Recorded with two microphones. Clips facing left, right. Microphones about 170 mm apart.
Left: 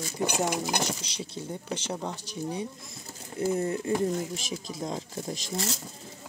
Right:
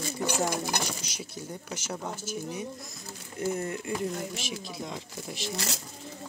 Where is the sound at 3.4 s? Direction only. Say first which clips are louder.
Left 4 dB; 25° left (ahead or behind).